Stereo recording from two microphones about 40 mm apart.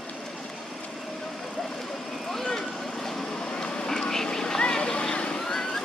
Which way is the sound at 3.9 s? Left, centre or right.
Centre.